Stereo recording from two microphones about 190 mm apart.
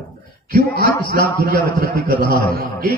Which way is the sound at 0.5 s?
50° right (ahead or behind).